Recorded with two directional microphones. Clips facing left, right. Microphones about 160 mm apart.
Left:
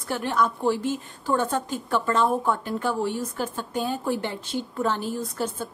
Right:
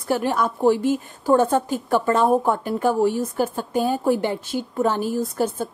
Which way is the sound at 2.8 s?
45° right (ahead or behind).